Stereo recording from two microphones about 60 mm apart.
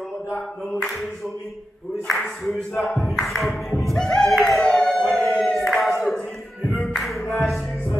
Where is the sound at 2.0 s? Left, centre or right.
Centre.